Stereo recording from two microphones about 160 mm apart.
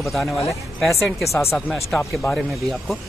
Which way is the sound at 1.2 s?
15° left (ahead or behind).